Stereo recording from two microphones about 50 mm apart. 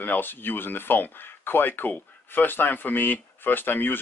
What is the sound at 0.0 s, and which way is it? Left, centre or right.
Speech, left.